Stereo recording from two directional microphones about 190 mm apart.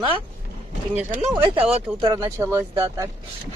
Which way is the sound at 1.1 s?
35° right (ahead or behind).